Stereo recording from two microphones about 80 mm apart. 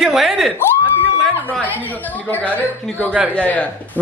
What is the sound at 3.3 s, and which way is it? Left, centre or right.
Speech, centre.